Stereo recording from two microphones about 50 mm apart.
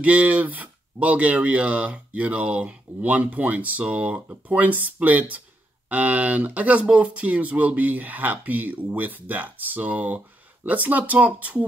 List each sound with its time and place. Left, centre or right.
0.0 s speech: right